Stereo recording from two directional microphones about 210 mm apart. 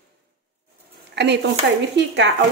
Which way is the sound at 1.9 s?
55° right (ahead or behind).